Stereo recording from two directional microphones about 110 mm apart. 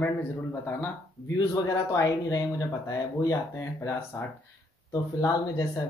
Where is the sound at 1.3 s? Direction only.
35° left (ahead or behind).